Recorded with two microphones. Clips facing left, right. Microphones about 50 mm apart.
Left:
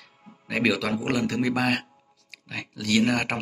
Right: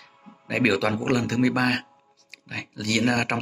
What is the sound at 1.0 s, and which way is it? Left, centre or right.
Speech, centre.